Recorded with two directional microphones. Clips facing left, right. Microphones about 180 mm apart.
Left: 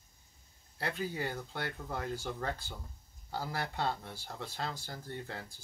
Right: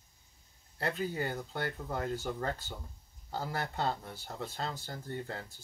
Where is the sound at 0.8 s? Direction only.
Centre (ahead or behind).